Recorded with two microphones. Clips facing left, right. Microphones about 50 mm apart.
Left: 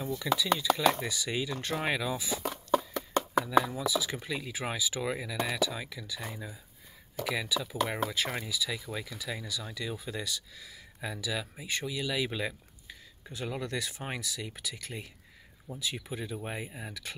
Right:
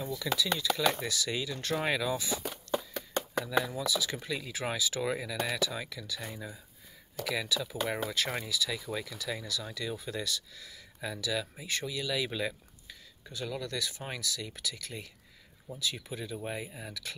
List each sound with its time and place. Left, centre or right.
0.0 s speech: left
3.4 s speech: centre
13.3 s speech: left